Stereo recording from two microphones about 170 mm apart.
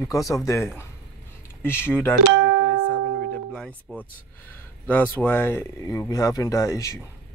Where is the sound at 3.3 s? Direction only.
5° left (ahead or behind).